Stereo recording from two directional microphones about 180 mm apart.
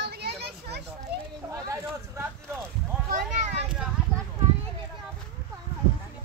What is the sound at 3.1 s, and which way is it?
Speech, 45° right (ahead or behind).